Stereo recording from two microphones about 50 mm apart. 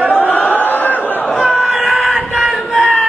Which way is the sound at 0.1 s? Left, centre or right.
Left.